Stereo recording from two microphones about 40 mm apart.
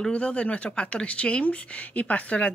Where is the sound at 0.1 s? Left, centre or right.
Left.